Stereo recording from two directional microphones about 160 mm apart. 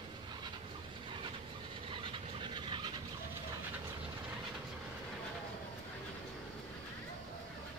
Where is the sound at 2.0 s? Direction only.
30° right (ahead or behind).